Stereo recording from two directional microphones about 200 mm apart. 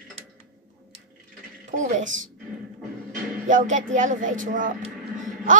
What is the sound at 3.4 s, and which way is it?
A woman's voice, 40° right (ahead or behind).